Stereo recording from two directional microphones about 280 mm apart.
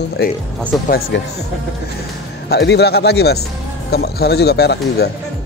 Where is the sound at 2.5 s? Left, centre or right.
Left.